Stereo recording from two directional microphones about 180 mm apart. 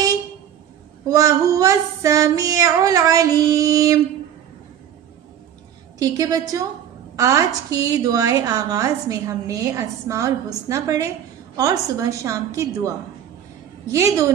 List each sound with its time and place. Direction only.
1.0 s a woman's voice: 20° right (ahead or behind)
5.9 s a woman's voice: 20° right (ahead or behind)
13.9 s a woman's voice: 15° right (ahead or behind)